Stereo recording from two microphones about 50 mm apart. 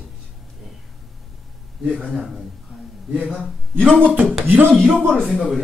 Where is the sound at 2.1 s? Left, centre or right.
Centre.